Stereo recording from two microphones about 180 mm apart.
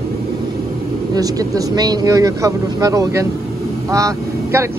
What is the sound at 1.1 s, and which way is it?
Speech, 20° right (ahead or behind).